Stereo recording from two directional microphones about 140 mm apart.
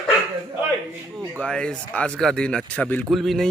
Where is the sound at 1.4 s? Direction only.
5° left (ahead or behind).